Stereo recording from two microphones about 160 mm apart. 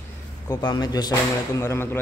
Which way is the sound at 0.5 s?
25° left (ahead or behind).